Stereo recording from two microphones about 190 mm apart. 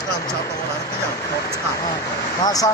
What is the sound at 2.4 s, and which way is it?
Speech, 20° left (ahead or behind).